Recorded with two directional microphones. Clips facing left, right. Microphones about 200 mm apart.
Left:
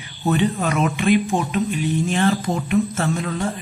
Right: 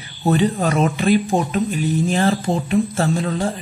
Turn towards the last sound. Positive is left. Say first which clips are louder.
# right 3 dB
turn(degrees=-30)  # may be behind; listen again after turning